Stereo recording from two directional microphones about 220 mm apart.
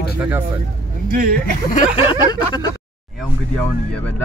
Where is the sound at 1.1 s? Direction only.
45° right (ahead or behind).